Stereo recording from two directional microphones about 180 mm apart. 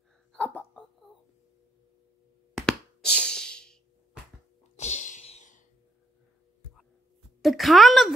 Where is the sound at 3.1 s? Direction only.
5° left (ahead or behind).